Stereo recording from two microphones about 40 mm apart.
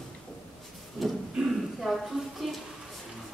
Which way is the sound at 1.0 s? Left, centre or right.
Centre.